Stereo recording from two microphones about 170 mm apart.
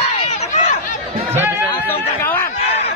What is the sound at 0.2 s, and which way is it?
Chatter, 45° left (ahead or behind).